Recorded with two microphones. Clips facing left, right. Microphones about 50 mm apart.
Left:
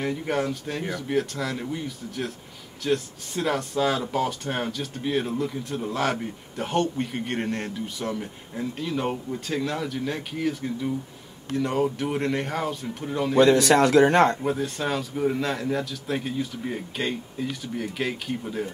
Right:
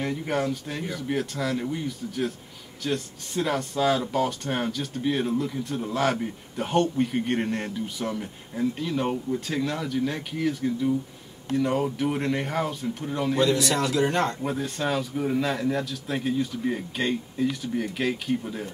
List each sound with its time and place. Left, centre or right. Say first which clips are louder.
0.0 s speech: left 1 dB; centre
13.4 s speech: left 8 dB; left
14.4 s speech: left 1 dB; centre